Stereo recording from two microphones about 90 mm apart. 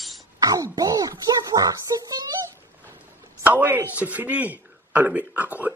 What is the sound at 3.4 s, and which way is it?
A man's voice, 20° right (ahead or behind).